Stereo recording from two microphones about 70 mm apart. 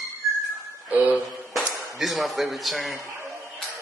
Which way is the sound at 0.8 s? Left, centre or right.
Right.